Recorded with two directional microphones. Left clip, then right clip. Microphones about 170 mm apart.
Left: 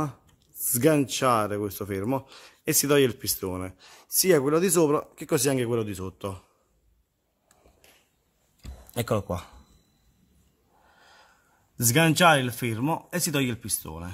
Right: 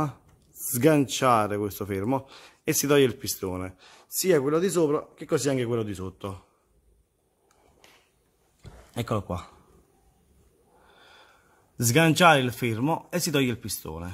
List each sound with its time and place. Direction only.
0.0 s speech: centre (ahead or behind); by 6.4 s 20° left (ahead or behind)
8.9 s speech: 25° left (ahead or behind)
11.0 s snort: 5° left (ahead or behind)
11.7 s speech: centre (ahead or behind)